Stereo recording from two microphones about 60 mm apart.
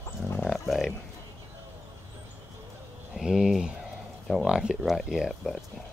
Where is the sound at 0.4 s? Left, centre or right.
Centre.